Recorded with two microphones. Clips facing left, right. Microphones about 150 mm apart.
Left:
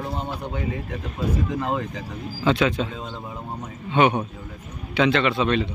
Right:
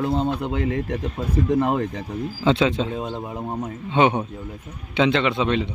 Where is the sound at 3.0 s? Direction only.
60° right (ahead or behind).